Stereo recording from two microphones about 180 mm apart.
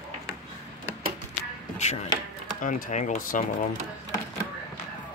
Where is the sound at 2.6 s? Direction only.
45° left (ahead or behind).